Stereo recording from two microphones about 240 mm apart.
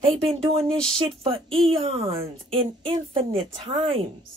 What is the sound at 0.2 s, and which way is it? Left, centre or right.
Speech, right.